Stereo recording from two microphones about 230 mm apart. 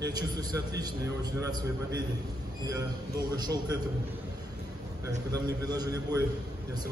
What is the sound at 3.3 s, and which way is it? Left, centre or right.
Speech, centre.